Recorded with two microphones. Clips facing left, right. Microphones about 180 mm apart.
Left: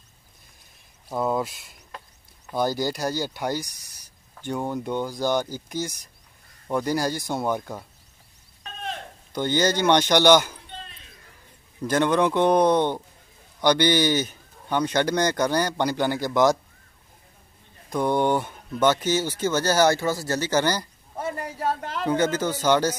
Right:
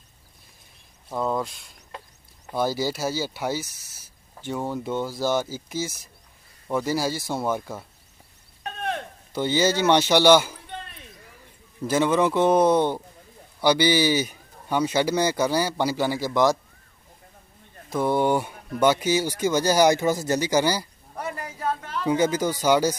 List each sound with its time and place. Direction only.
1.0 s speech: 5° left (ahead or behind)
8.6 s a sound: 60° right (ahead or behind)
9.3 s speech: 5° right (ahead or behind)
11.9 s speech: 5° right (ahead or behind)
17.8 s speech: 5° right (ahead or behind)
21.2 s a sound: 35° left (ahead or behind)
22.0 s speech: 10° right (ahead or behind)